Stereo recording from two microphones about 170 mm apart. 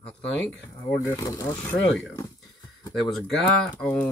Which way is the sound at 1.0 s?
20° left (ahead or behind).